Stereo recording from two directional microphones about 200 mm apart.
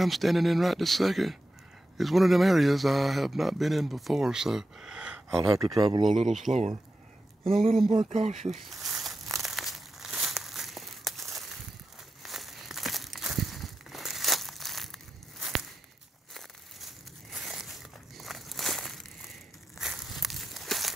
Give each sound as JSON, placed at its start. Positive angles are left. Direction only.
{"t": 0.0, "sound": "speech", "side_deg": 0}
{"t": 5.8, "sound": "speech", "side_deg": -25}
{"t": 6.0, "sound": "speech", "side_deg": 0}
{"t": 6.5, "sound": "speech", "side_deg": -35}
{"t": 7.9, "sound": "speech", "side_deg": -35}
{"t": 8.4, "sound": "crumpling", "side_deg": 0}
{"t": 12.2, "sound": "a sound", "side_deg": 0}
{"t": 16.3, "sound": "a sound", "side_deg": 0}